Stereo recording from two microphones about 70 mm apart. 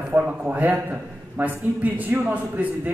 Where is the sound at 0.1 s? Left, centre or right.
Right.